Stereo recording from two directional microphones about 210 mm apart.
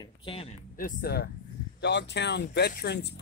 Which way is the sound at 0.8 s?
45° left (ahead or behind).